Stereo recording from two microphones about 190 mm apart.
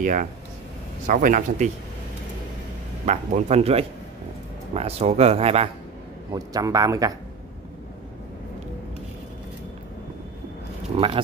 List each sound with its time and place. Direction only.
0.0 s speech: 45° right (ahead or behind)
3.1 s speech: 35° right (ahead or behind)
6.3 s speech: 20° right (ahead or behind)
11.0 s speech: 30° right (ahead or behind)